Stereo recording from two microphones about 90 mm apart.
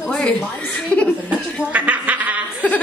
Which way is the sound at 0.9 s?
10° left (ahead or behind).